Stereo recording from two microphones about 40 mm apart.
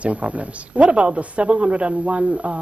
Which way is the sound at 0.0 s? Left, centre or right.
Right.